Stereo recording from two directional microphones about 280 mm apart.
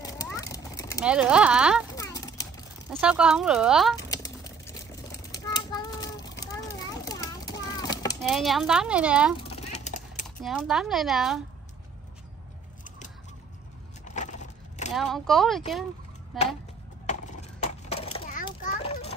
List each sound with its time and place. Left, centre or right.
0.0 s turkey: centre
1.0 s speech: centre
2.0 s a sound: centre
2.9 s speech: centre
4.1 s a sound: centre
6.4 s children playing: centre
8.2 s speech: centre
9.4 s a sound: left
10.2 s speech: centre
14.0 s vehicle: left
15.0 s speech: centre
17.0 s children playing: left